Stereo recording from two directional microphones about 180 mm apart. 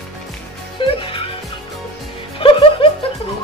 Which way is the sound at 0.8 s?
30° left (ahead or behind).